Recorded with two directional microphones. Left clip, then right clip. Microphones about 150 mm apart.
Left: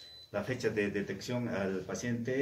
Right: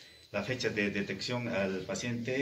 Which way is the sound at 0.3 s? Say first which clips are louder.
Right 1 dB; 15° left (ahead or behind).